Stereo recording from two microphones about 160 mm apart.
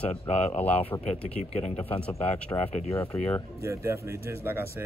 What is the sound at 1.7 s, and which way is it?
Speech, 10° left (ahead or behind).